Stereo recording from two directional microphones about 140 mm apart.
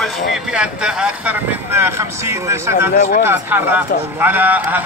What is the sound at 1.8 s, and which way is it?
A man's voice, 15° right (ahead or behind).